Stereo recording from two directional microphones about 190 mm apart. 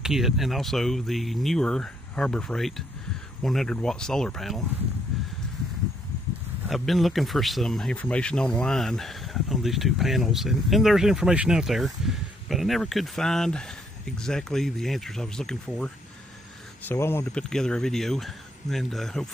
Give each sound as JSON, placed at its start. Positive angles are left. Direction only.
{"t": 0.0, "sound": "speech", "side_deg": 0}
{"t": 6.7, "sound": "speech", "side_deg": 0}